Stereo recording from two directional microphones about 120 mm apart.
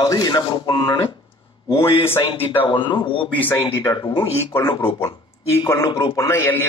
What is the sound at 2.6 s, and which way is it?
Speech, 40° left (ahead or behind).